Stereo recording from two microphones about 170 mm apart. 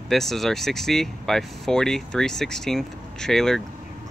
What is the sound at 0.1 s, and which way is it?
Speech, centre (ahead or behind).